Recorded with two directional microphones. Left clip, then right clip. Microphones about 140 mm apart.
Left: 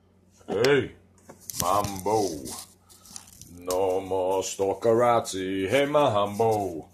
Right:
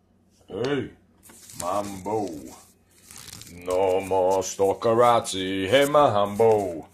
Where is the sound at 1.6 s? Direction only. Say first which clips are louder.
Left 3 dB; 10° right (ahead or behind).